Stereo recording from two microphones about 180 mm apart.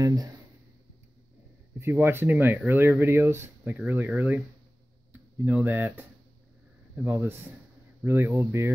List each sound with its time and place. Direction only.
0.0 s speech: 20° right (ahead or behind)
1.8 s speech: 10° right (ahead or behind)